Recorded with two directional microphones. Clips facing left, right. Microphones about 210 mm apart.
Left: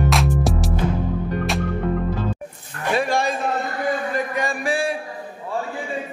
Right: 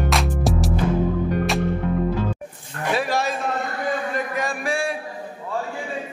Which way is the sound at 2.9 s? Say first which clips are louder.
Left 2 dB; centre (ahead or behind).